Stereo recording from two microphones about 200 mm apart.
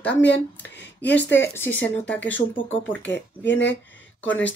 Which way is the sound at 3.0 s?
65° left (ahead or behind).